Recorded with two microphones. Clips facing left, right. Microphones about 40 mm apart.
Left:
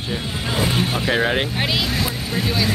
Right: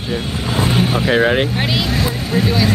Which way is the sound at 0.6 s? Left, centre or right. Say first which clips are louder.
Right 5 dB; centre.